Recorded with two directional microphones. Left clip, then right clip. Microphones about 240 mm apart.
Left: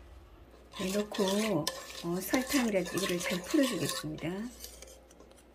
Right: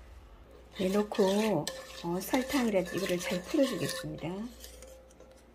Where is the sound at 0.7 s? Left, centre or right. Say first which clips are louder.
Right 4 dB; centre.